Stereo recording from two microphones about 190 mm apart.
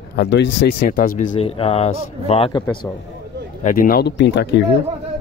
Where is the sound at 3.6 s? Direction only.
50° left (ahead or behind); by 4.6 s 65° left (ahead or behind).